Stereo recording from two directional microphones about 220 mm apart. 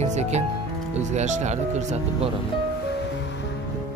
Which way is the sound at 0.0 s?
30° right (ahead or behind).